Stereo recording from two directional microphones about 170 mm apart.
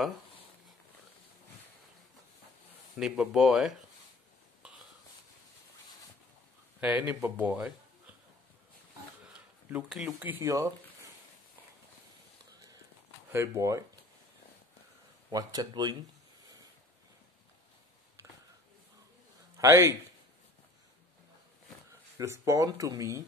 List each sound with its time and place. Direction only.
3.0 s speech: 5° right (ahead or behind)
6.8 s speech: 10° right (ahead or behind)
9.2 s speech: 5° right (ahead or behind)
13.3 s speech: 15° right (ahead or behind)
15.3 s speech: 25° right (ahead or behind)
19.5 s a man's voice: 15° right (ahead or behind)
22.2 s speech: 15° right (ahead or behind)